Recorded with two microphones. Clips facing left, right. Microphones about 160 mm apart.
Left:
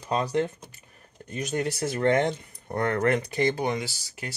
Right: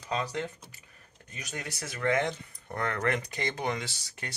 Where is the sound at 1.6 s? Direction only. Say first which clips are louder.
Left 8 dB; 30° left (ahead or behind).